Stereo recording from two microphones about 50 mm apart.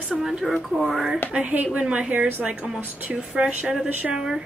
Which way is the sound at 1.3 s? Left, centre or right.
Right.